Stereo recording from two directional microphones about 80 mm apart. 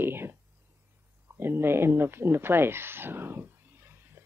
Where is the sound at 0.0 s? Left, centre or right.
Right.